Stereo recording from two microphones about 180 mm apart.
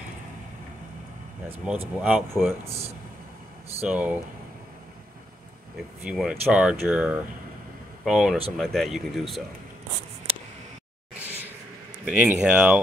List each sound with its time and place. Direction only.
1.6 s speech: 5° right (ahead or behind)
3.8 s speech: 10° right (ahead or behind)
6.0 s speech: 5° right (ahead or behind)
12.0 s speech: 10° right (ahead or behind)